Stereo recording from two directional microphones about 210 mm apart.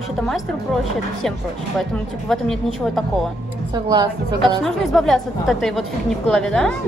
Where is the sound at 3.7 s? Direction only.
20° right (ahead or behind).